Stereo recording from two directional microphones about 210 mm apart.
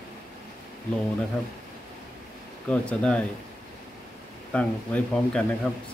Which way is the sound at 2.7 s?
5° left (ahead or behind).